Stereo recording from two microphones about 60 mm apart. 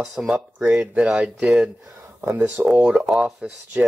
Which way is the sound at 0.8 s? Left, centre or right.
Centre.